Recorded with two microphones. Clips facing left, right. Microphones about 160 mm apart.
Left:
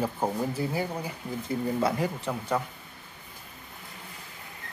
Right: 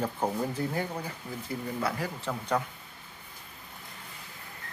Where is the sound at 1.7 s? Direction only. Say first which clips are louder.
Left 4 dB; 20° left (ahead or behind).